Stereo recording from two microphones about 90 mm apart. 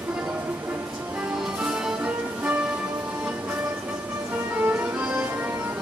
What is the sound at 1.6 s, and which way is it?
Music, 10° right (ahead or behind).